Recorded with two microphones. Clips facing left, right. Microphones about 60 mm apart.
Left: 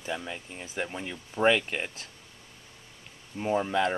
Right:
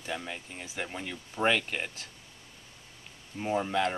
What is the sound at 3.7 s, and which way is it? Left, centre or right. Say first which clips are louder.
Speech: left 2 dB; left.